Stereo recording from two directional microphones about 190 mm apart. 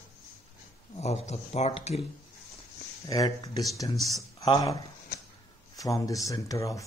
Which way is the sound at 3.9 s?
Centre (ahead or behind).